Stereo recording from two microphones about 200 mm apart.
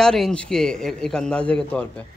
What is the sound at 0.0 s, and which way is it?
A man's voice, 5° left (ahead or behind).